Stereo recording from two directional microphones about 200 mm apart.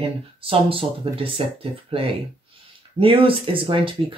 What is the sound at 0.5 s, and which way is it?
Speech, 25° right (ahead or behind).